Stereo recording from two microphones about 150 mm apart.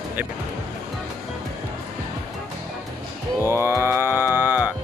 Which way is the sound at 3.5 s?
15° right (ahead or behind).